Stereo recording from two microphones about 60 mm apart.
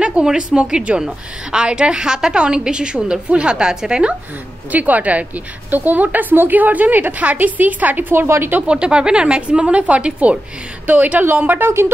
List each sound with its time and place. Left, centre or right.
0.0 s a woman's voice: centre
4.7 s a woman's voice: right
8.5 s a woman's voice: centre; by 11.9 s right